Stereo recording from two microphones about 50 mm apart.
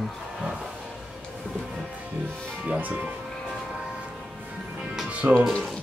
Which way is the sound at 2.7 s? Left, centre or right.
Right.